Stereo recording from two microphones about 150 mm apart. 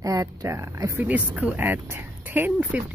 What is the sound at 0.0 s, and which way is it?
A woman's voice, 20° right (ahead or behind).